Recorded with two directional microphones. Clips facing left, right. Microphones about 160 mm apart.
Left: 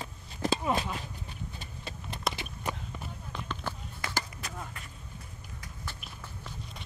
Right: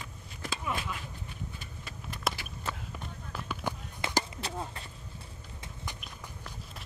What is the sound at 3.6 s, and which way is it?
Walk, 20° right (ahead or behind).